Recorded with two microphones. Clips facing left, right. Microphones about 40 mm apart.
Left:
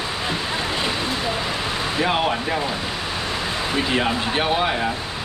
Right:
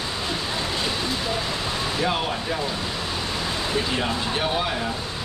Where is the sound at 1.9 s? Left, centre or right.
Left.